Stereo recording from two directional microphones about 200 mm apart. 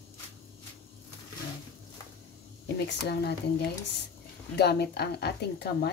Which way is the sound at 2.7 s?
55° left (ahead or behind).